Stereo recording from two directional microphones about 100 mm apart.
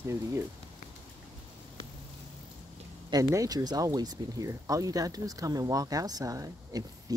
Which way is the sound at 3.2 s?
35° right (ahead or behind).